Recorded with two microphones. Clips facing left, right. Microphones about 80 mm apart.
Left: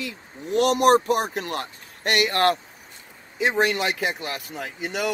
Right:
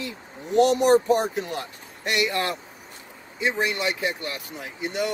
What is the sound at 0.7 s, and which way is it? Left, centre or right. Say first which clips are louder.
Speech: left 1 dB; left.